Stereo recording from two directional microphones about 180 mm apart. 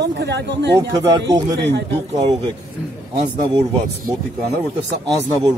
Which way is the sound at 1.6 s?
75° right (ahead or behind).